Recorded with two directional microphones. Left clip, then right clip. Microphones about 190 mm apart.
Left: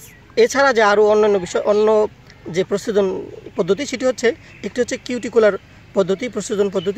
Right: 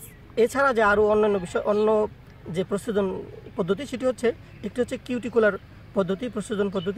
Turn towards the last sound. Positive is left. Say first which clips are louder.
# left 7 dB
turn(degrees=45)  # may be behind; listen again after turning